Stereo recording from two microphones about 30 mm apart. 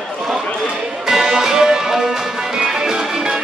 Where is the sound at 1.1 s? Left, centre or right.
Centre.